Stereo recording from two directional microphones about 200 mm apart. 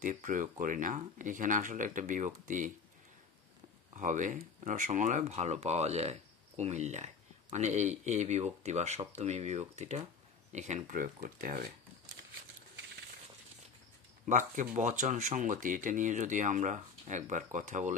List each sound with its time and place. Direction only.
0.0 s speech: 40° right (ahead or behind)
3.9 s speech: 40° right (ahead or behind)
14.2 s speech: 40° right (ahead or behind)